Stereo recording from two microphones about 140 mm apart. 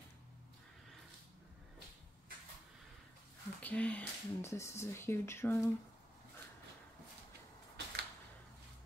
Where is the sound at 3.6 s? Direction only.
10° left (ahead or behind).